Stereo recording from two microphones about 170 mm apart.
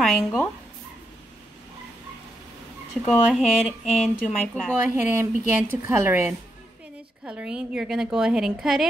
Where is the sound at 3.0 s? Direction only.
Centre (ahead or behind).